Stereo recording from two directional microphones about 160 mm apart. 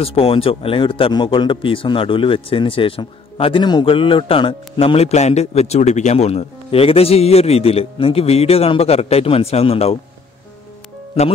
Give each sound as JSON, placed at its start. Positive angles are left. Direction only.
{"t": 0.0, "sound": "speech", "side_deg": 35}